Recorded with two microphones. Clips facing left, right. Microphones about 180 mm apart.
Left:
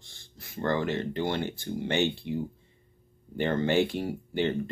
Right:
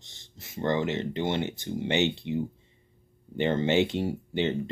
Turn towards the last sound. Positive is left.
turn(degrees=-20)  # may be behind; listen again after turning